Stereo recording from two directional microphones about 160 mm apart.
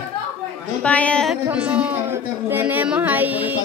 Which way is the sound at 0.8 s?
10° left (ahead or behind).